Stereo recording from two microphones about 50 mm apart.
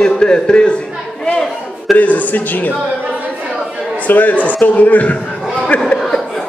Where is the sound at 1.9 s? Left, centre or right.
Left.